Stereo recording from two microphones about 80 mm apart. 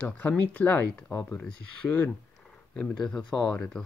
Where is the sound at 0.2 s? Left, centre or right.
Centre.